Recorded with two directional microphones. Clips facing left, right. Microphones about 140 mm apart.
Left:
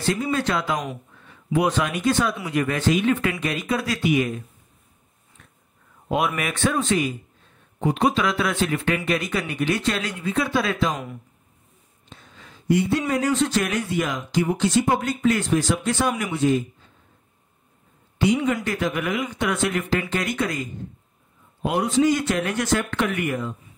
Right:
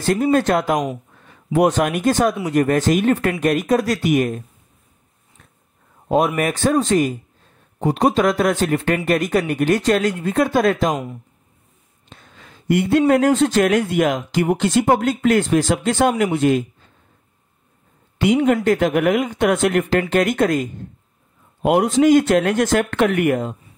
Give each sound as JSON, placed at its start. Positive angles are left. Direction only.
{"t": 0.0, "sound": "speech", "side_deg": -50}
{"t": 5.4, "sound": "a sound", "side_deg": -40}
{"t": 6.0, "sound": "speech", "side_deg": -40}
{"t": 12.1, "sound": "a man's voice", "side_deg": -55}
{"t": 18.2, "sound": "speech", "side_deg": -60}
{"t": 21.6, "sound": "a man's voice", "side_deg": -65}